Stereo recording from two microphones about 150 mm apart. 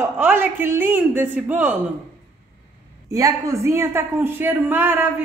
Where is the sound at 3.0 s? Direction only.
20° right (ahead or behind).